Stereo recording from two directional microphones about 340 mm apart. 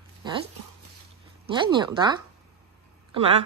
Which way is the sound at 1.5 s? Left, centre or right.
Centre.